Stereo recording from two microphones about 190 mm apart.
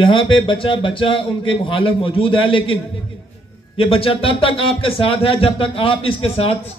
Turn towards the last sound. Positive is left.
turn(degrees=30)  # may be behind; listen again after turning